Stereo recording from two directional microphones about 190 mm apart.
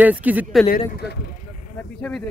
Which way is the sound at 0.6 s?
50° left (ahead or behind).